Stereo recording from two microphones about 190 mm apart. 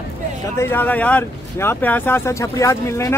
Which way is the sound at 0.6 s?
10° left (ahead or behind).